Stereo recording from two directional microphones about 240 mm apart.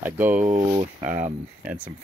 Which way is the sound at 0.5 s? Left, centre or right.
Centre.